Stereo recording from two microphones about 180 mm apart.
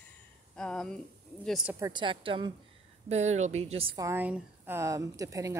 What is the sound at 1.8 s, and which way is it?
Speech, 25° right (ahead or behind).